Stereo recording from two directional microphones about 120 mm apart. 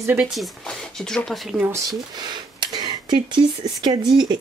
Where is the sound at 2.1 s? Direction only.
40° right (ahead or behind).